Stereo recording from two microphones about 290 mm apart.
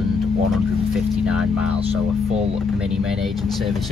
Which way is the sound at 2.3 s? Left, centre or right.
Right.